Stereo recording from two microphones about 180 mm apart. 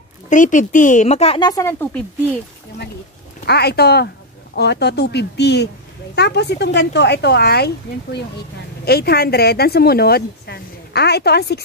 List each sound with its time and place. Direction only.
0.3 s a woman's voice: 45° left (ahead or behind)
1.5 s speech: 15° left (ahead or behind)
3.4 s speech: 65° left (ahead or behind)